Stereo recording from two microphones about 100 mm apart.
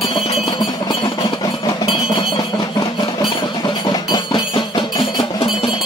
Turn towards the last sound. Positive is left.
turn(degrees=50)  # may be behind; listen again after turning